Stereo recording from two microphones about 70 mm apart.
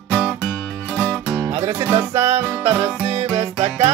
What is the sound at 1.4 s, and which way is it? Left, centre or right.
Music, right.